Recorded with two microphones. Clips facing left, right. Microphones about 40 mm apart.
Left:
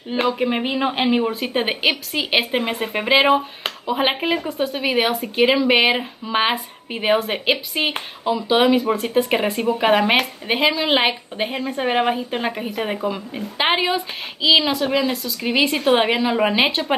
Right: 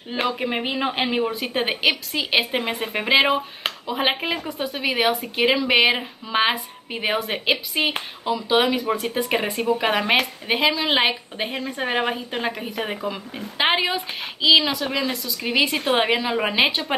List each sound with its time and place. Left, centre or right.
0.1 s speech: centre
10.7 s a woman's voice: left
11.0 s a woman's voice: centre